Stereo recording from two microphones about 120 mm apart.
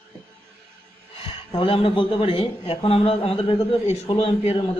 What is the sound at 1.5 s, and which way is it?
A man's voice, 45° left (ahead or behind).